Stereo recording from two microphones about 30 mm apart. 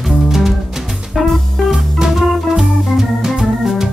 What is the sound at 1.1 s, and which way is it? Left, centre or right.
Music, centre.